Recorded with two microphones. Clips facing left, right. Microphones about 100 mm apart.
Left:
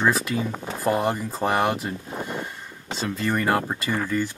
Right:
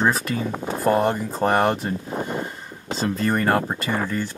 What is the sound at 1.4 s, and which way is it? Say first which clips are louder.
Speech: right 3 dB; centre (ahead or behind).